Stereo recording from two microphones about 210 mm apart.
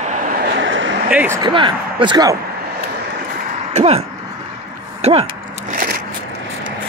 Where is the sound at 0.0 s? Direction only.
40° right (ahead or behind); by 0.9 s 60° right (ahead or behind).